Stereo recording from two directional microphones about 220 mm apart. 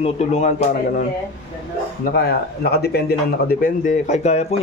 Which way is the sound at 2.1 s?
45° left (ahead or behind).